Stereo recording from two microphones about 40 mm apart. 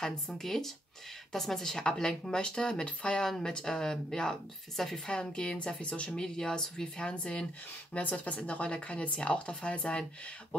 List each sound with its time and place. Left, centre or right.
0.0 s speech: centre
5.0 s speech: left
6.0 s speech: centre
7.1 s speech: left
7.9 s speech: left